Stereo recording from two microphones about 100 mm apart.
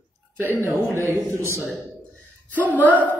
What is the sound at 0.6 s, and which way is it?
Speech, 30° right (ahead or behind).